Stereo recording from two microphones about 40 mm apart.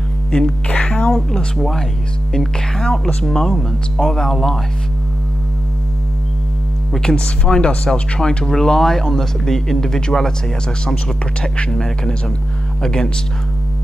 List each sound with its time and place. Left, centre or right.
0.7 s a sound: left
1.1 s speech: centre
3.3 s speech: centre
7.0 s speech: centre